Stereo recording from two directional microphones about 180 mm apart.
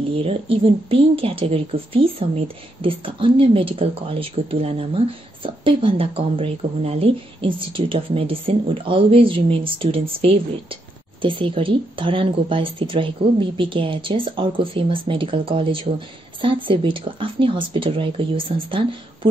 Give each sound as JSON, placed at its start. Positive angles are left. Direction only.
{"t": 0.2, "sound": "speech", "side_deg": -30}